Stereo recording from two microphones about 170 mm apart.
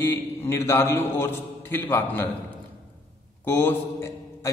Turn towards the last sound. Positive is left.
turn(degrees=15)  # may be behind; listen again after turning